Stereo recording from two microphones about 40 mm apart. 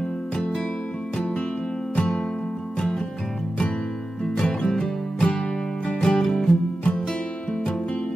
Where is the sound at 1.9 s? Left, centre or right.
Left.